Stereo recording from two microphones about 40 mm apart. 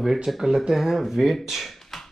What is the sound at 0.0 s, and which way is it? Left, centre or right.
Speech, centre.